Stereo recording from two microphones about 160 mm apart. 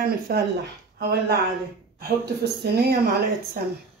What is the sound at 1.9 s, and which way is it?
Speech, 90° right.